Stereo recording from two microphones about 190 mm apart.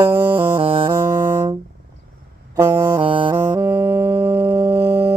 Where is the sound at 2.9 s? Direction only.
25° right (ahead or behind).